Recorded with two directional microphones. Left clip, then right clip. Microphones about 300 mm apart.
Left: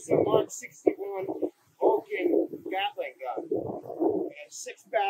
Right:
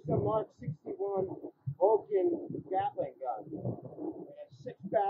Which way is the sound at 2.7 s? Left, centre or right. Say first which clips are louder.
Left 1 dB; left.